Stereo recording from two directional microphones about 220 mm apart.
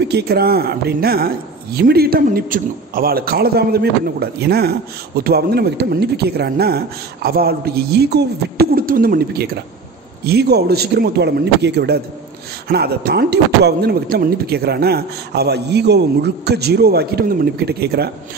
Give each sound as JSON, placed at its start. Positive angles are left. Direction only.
{"t": 0.1, "sound": "speech", "side_deg": -45}